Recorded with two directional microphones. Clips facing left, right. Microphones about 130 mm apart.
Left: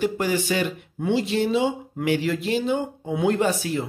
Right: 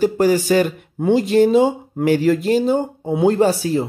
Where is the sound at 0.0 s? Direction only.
40° right (ahead or behind).